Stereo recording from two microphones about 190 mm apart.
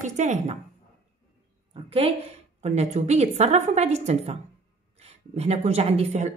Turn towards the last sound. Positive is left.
turn(degrees=-35)  # may be behind; listen again after turning